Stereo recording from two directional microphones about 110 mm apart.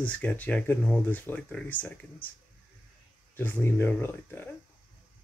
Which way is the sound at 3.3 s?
20° left (ahead or behind).